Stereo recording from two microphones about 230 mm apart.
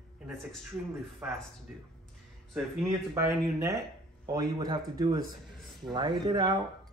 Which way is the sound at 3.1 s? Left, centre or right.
Centre.